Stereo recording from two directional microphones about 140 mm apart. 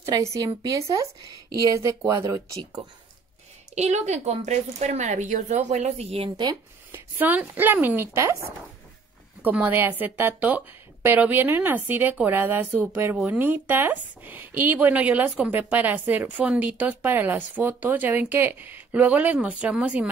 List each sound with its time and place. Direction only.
0.0 s speech: 20° right (ahead or behind)
3.7 s speech: 55° right (ahead or behind)
6.9 s speech: 10° right (ahead or behind)
9.4 s speech: 10° right (ahead or behind)